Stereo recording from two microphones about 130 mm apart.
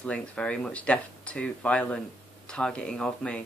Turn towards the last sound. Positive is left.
turn(degrees=5)  # may be behind; listen again after turning